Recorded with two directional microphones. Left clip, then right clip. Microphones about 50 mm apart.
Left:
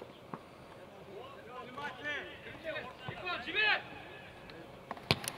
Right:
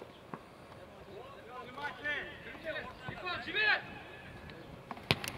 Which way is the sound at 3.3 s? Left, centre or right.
Right.